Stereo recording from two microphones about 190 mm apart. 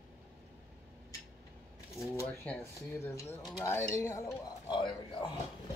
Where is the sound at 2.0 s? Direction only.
15° left (ahead or behind).